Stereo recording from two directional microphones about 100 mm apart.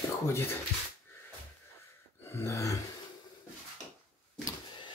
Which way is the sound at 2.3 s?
30° left (ahead or behind).